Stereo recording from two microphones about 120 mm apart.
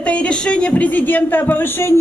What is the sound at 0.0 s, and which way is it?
A woman's voice, 10° left (ahead or behind).